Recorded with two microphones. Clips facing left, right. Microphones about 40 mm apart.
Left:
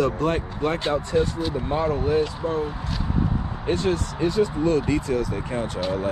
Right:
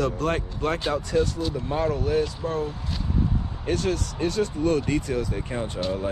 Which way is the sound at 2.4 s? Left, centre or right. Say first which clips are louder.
Left 2 dB; centre.